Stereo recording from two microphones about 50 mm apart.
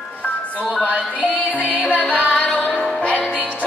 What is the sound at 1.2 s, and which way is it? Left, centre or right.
Music, left.